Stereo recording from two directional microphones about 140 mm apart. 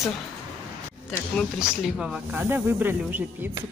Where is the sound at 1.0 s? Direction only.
Centre (ahead or behind).